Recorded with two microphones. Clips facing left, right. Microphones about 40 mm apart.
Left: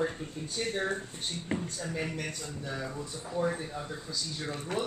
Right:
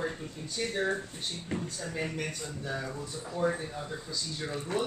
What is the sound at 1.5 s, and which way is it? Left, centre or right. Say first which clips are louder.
Speech: left 2 dB; left.